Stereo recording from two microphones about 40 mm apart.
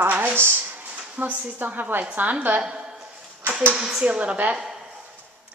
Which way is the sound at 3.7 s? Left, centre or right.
Centre.